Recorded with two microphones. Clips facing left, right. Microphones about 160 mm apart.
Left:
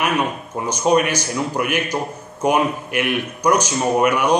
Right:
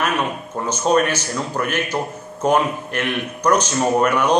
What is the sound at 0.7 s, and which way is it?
A man's voice, 10° left (ahead or behind).